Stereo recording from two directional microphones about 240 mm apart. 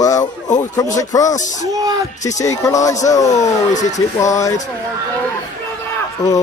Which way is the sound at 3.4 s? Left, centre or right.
Left.